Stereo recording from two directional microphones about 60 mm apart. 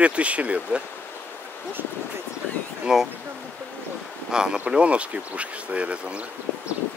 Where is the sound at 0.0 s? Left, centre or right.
Right.